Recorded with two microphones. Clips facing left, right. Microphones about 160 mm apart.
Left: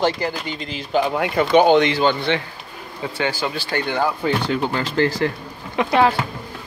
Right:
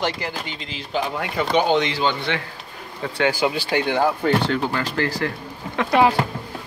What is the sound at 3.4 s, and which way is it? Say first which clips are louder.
Speech: right 3 dB; 10° right (ahead or behind).